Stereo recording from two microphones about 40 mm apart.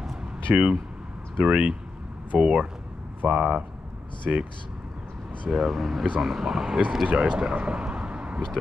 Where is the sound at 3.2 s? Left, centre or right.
Right.